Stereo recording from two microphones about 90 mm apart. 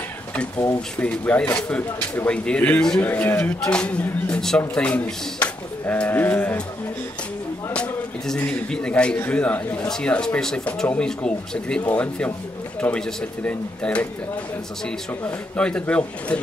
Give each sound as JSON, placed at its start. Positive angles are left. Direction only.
{"t": 0.9, "sound": "a man's voice", "side_deg": 15}
{"t": 2.3, "sound": "a man's voice", "side_deg": 10}
{"t": 7.7, "sound": "a man's voice", "side_deg": 10}
{"t": 15.5, "sound": "speech", "side_deg": 10}